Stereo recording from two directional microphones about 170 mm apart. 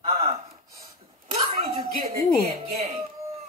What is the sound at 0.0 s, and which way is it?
Gasp, 35° right (ahead or behind).